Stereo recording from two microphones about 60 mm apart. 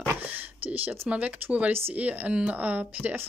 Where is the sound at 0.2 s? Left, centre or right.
Right.